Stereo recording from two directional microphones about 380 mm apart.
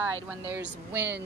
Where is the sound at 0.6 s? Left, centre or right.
Right.